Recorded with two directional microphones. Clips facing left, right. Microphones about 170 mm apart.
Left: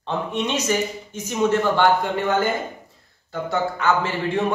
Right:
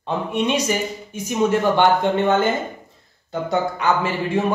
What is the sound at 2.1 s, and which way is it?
Speech, 25° right (ahead or behind).